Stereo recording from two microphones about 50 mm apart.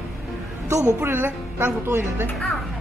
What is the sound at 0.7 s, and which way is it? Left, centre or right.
Speech, right.